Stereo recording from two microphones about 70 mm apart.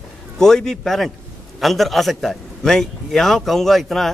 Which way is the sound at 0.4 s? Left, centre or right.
Centre.